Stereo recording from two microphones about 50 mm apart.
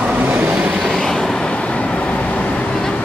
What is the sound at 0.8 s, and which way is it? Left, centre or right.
Vehicle, centre.